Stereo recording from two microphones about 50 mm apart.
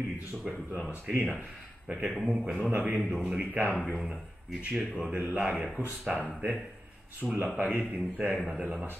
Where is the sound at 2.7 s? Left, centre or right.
Right.